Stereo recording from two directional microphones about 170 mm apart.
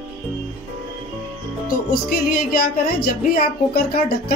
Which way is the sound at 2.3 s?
60° left (ahead or behind).